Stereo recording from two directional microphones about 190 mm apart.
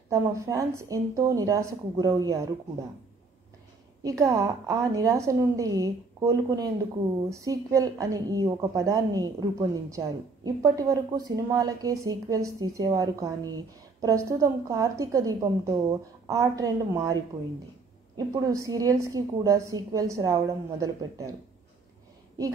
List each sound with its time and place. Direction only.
0.1 s a woman's voice: 15° right (ahead or behind)
4.0 s a woman's voice: 15° right (ahead or behind)